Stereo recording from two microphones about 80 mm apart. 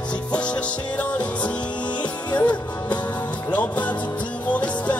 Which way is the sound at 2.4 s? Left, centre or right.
Centre.